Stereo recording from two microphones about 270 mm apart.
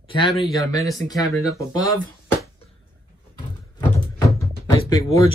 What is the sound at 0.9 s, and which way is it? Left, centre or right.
Speech, centre.